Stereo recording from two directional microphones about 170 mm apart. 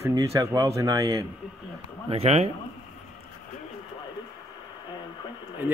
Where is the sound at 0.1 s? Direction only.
20° right (ahead or behind).